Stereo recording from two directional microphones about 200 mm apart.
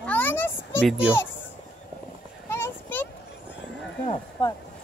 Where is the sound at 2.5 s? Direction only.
10° left (ahead or behind).